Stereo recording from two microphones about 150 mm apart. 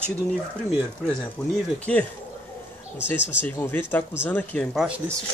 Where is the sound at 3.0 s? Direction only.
15° left (ahead or behind).